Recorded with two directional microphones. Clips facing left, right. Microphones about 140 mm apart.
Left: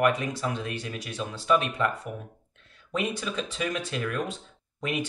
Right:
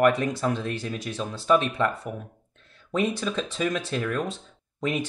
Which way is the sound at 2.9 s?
40° right (ahead or behind).